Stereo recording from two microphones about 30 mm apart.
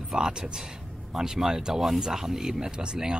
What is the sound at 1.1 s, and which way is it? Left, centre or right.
Speech, centre.